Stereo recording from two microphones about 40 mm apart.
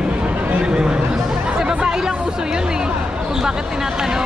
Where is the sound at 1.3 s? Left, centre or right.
Right.